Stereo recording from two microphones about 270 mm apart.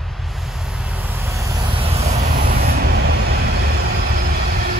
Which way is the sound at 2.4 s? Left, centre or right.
Right.